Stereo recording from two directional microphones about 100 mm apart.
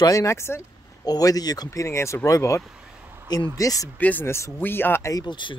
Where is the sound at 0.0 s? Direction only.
35° left (ahead or behind).